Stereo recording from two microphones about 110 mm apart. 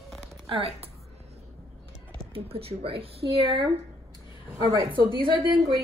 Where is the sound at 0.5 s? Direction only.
60° right (ahead or behind).